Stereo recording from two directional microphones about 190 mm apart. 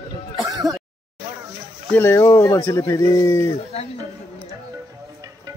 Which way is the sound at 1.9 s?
15° left (ahead or behind).